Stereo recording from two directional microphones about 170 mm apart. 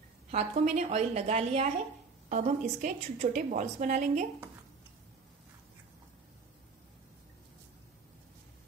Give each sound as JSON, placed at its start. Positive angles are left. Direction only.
{"t": 0.3, "sound": "a woman's voice", "side_deg": -40}